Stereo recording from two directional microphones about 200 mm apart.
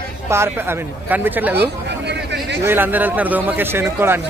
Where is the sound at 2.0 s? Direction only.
60° right (ahead or behind).